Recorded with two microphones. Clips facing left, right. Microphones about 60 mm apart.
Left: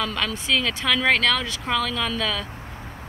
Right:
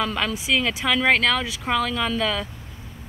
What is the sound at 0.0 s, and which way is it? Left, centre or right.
Speech, centre.